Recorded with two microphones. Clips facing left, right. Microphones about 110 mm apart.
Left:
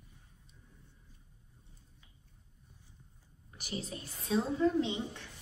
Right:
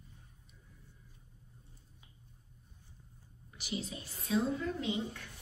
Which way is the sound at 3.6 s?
45° left (ahead or behind).